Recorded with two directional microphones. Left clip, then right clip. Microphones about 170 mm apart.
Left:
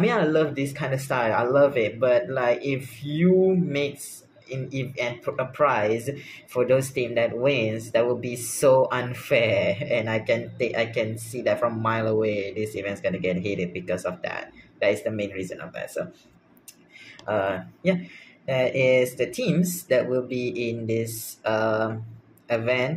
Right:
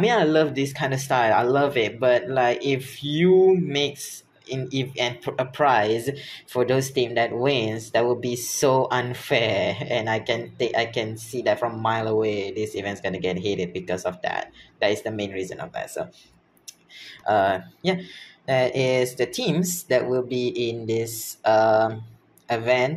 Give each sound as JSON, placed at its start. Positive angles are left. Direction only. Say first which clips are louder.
{"t": 0.0, "sound": "speech", "louder": "right 3 dB", "side_deg": -20}
{"t": 4.5, "sound": "speech", "louder": "right 4 dB", "side_deg": -20}
{"t": 17.3, "sound": "speech", "louder": "right 5 dB", "side_deg": -20}